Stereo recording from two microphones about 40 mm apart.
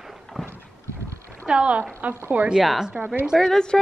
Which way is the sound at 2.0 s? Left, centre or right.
Right.